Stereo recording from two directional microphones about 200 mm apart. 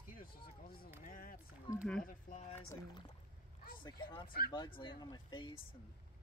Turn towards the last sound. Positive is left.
turn(degrees=25)  # may be behind; listen again after turning